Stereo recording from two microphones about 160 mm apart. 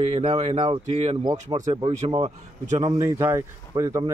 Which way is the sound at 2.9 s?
20° right (ahead or behind).